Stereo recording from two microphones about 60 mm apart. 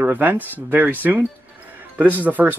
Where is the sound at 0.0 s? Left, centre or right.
Right.